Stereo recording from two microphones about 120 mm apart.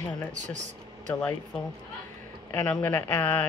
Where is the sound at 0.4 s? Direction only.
90° right.